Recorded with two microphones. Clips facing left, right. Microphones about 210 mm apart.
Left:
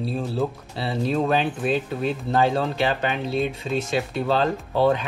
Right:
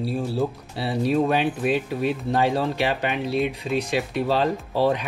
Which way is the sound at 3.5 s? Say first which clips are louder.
Right 1 dB; 15° right (ahead or behind).